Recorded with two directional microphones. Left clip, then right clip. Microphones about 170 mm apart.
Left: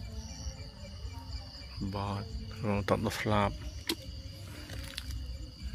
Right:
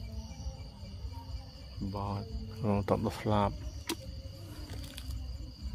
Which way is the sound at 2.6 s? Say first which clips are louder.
Even; 20° right (ahead or behind).